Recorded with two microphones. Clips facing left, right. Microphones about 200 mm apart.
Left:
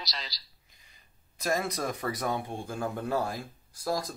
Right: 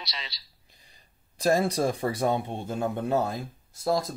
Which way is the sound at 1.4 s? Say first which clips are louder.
Right 7 dB; 30° right (ahead or behind).